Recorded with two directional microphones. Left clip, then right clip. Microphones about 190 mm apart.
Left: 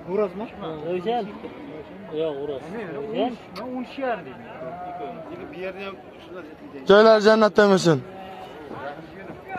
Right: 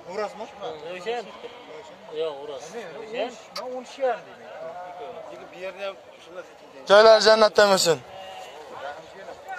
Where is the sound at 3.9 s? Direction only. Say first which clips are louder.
Right 2 dB; 70° right (ahead or behind).